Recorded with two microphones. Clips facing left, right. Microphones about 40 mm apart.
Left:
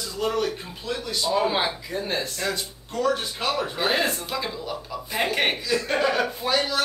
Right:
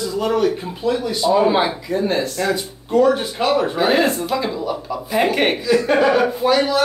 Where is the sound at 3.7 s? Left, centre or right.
Centre.